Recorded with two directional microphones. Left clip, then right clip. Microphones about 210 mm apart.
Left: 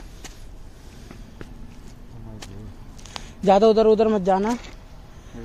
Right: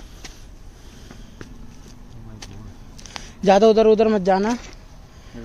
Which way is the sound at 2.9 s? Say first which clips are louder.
Right 1 dB; 10° right (ahead or behind).